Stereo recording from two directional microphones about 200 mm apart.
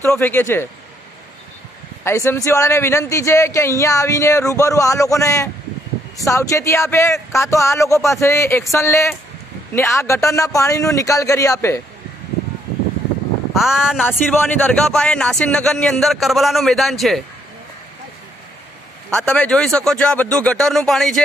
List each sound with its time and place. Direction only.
0.0 s a man's voice: 10° left (ahead or behind)
2.0 s a man's voice: 15° left (ahead or behind)
13.5 s speech: centre (ahead or behind)
19.0 s speech: 5° left (ahead or behind)